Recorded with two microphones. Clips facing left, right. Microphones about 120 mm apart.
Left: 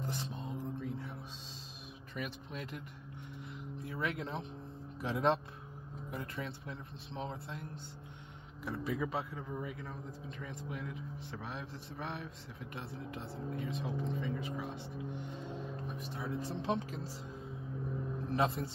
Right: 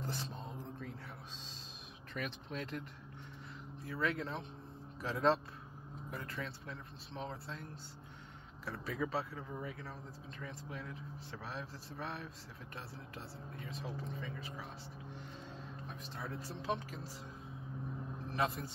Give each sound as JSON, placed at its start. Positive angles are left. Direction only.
{"t": 0.0, "sound": "speech", "side_deg": 15}
{"t": 0.7, "sound": "a sound", "side_deg": 15}
{"t": 2.1, "sound": "speech", "side_deg": 10}
{"t": 3.8, "sound": "speech", "side_deg": 20}
{"t": 11.4, "sound": "speech", "side_deg": 20}
{"t": 16.0, "sound": "speech", "side_deg": 15}
{"t": 16.6, "sound": "speech", "side_deg": 25}
{"t": 18.3, "sound": "speech", "side_deg": 25}